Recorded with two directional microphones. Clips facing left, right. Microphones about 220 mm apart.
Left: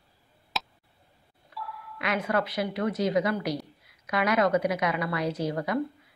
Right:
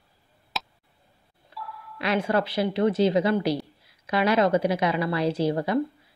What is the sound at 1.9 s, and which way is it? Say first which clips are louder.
A woman's voice: right 4 dB; 30° right (ahead or behind).